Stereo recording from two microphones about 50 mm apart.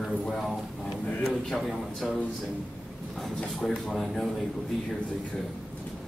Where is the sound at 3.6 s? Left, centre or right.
Centre.